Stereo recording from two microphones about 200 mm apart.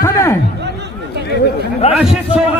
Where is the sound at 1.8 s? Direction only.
30° left (ahead or behind).